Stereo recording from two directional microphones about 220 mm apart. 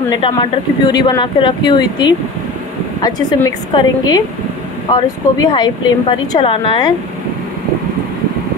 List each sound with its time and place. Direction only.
0.2 s a woman's voice: 20° left (ahead or behind)